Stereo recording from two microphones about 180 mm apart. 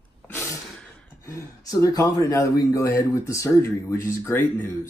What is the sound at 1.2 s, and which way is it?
A man's voice, 15° left (ahead or behind).